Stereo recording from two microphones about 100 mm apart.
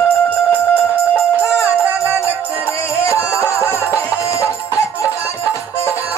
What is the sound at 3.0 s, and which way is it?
Music, 30° left (ahead or behind).